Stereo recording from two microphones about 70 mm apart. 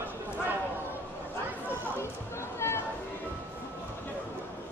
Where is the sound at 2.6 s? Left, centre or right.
Left.